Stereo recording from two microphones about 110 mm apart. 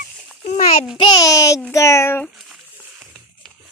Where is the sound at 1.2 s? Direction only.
30° left (ahead or behind).